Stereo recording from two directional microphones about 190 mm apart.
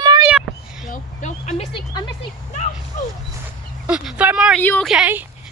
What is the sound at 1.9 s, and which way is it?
Vehicle, 20° left (ahead or behind).